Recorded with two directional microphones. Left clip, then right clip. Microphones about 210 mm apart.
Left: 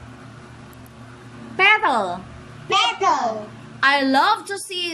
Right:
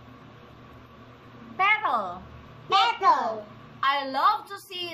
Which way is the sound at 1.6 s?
45° left (ahead or behind).